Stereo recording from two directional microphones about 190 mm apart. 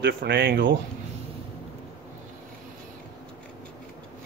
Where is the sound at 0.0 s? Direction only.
60° right (ahead or behind).